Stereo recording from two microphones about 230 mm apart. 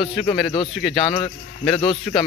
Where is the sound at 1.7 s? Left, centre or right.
Centre.